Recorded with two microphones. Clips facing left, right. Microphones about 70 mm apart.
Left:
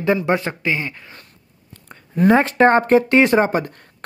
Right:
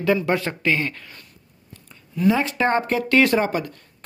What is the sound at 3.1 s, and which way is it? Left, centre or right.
Speech, left.